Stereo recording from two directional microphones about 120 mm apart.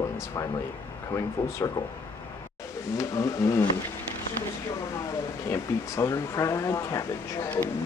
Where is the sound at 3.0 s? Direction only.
25° left (ahead or behind).